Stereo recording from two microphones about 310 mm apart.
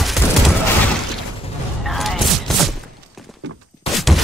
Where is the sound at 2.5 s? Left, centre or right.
Centre.